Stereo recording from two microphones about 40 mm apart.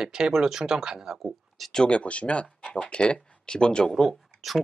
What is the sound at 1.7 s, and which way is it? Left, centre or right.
Speech, left.